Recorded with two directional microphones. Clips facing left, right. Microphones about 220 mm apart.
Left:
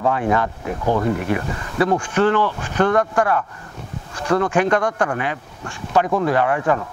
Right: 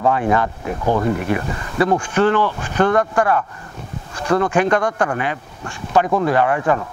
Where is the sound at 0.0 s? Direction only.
20° right (ahead or behind).